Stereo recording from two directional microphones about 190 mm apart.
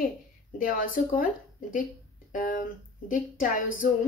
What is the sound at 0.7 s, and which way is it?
Speech, 45° left (ahead or behind).